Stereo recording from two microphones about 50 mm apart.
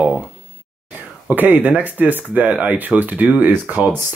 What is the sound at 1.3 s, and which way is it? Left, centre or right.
Speech, right.